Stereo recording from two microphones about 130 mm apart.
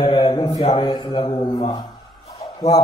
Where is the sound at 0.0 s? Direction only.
50° left (ahead or behind).